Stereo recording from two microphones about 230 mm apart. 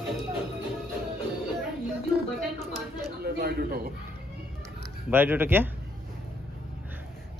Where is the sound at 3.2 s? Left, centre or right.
Right.